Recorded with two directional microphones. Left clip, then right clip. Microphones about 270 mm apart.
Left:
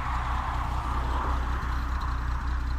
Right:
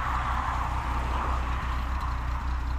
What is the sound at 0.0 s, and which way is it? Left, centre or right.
Vehicle, right.